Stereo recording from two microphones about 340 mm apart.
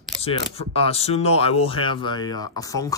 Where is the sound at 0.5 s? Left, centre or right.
Centre.